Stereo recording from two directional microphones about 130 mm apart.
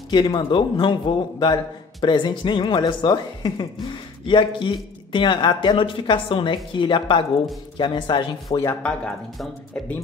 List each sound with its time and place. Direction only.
0.1 s a man's voice: 35° left (ahead or behind)
8.8 s speech: 5° left (ahead or behind)